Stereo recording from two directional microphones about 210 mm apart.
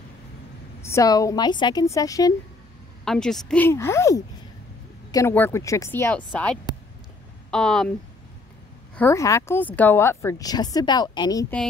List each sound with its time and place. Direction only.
0.8 s speech: 15° left (ahead or behind)
3.1 s speech: centre (ahead or behind)
8.9 s speech: 10° left (ahead or behind)